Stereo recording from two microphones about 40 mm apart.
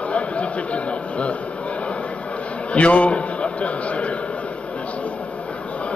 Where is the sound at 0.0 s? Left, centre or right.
Left.